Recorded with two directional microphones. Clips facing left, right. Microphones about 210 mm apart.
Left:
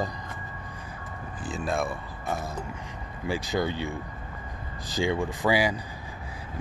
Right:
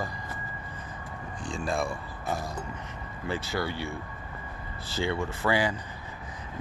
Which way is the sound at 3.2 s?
15° left (ahead or behind).